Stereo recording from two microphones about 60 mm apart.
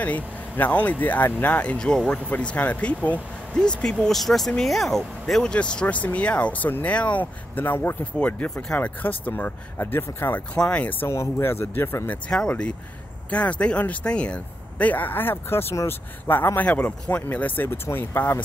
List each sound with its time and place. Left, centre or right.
0.0 s speech: left
4.0 s speech: centre; by 8.0 s left
8.0 s speech: left
10.5 s speech: left
11.1 s speech: left
12.3 s speech: centre; by 18.4 s left